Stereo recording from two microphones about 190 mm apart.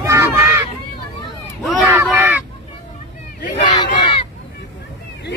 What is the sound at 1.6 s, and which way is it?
Crowd, 5° right (ahead or behind).